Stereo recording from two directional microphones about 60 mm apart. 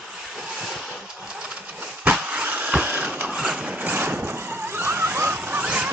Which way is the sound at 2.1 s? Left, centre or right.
Right.